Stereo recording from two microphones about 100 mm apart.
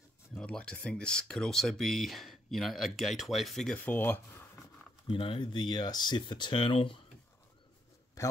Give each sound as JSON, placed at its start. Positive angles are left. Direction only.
{"t": 0.3, "sound": "speech", "side_deg": 10}
{"t": 3.7, "sound": "speech", "side_deg": 20}
{"t": 5.1, "sound": "speech", "side_deg": 60}
{"t": 8.2, "sound": "a man's voice", "side_deg": 35}